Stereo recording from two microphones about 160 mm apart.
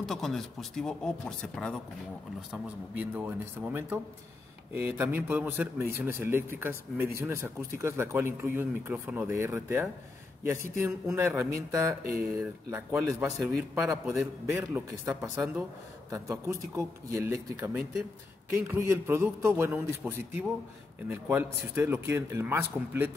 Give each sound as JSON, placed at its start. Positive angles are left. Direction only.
{"t": 0.0, "sound": "speech", "side_deg": 0}
{"t": 2.5, "sound": "a man's voice", "side_deg": -10}
{"t": 14.0, "sound": "speech", "side_deg": -5}
{"t": 16.4, "sound": "a man's voice", "side_deg": -20}